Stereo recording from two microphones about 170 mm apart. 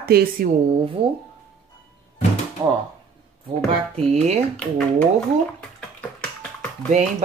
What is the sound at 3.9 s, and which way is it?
Speech, 40° right (ahead or behind).